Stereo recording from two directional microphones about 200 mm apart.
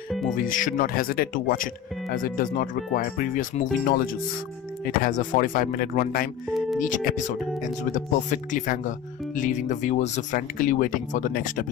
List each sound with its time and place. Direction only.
0.4 s speech: 40° left (ahead or behind)